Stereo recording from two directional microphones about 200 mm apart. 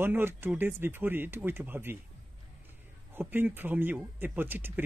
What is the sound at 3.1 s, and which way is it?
Speech, 10° right (ahead or behind).